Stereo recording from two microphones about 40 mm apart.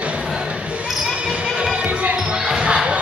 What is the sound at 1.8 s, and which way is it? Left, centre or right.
Music, right.